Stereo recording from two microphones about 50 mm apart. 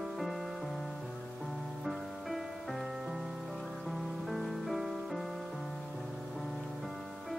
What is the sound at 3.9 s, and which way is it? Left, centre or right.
Music, centre.